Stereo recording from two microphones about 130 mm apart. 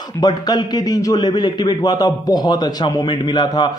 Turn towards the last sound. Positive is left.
turn(degrees=35)  # may be behind; listen again after turning